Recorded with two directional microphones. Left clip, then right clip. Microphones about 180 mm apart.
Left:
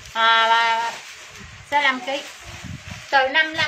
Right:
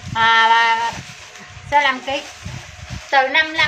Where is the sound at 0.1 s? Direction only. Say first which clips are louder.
Right 3 dB; 10° right (ahead or behind).